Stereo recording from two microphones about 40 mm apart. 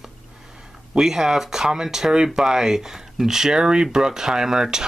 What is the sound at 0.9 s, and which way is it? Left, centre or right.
Speech, centre.